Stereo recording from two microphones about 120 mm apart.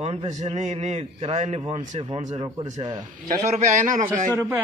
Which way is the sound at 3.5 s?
90° right.